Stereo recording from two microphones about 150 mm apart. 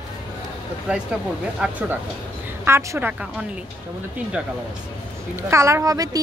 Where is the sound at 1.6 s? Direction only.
10° right (ahead or behind).